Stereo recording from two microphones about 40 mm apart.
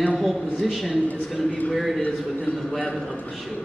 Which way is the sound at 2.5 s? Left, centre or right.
Left.